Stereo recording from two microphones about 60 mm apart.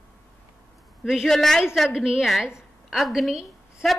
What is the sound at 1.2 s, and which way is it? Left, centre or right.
Speech, centre.